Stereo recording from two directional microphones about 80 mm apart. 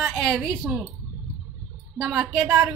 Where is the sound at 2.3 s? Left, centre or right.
Right.